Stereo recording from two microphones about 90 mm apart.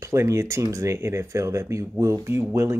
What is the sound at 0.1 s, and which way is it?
Speech, 30° right (ahead or behind).